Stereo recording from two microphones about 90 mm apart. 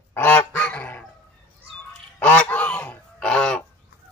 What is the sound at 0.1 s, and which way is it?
Goose, 20° left (ahead or behind).